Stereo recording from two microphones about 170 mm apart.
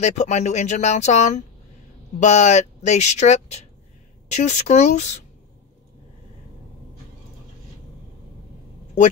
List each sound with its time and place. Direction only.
0.0 s speech: 40° left (ahead or behind)